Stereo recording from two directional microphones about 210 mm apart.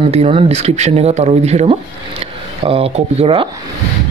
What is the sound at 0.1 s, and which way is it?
Speech, 30° right (ahead or behind).